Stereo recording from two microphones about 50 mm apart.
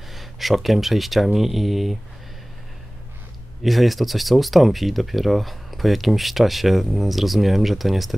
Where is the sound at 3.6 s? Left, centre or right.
Centre.